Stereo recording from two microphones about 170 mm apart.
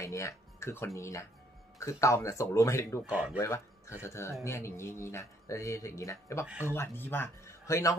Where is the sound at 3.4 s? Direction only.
15° left (ahead or behind).